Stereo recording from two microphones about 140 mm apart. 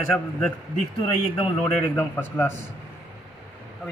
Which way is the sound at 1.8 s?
15° left (ahead or behind).